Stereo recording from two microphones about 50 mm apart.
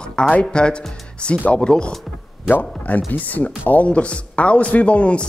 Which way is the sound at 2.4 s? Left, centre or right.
Left.